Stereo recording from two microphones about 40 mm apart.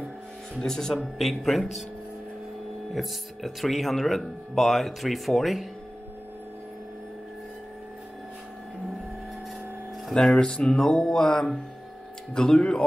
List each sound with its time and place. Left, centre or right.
0.6 s music: centre
1.0 s speech: centre
2.9 s speech: centre
10.3 s speech: left
10.8 s music: centre
12.4 s speech: left